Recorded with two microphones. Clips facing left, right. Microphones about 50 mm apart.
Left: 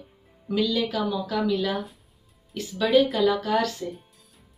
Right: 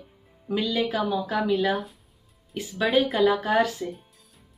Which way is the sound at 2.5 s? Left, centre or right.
Centre.